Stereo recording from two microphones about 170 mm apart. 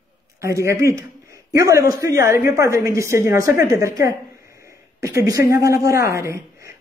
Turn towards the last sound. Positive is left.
turn(degrees=-15)  # may be behind; listen again after turning